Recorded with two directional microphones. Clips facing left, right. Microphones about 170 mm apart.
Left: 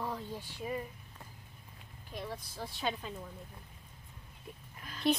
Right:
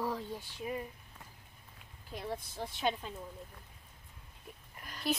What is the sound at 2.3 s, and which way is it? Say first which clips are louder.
Speech: right 7 dB; 20° right (ahead or behind).